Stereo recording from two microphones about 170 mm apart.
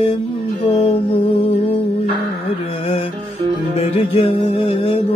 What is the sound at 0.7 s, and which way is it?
Music, 35° left (ahead or behind).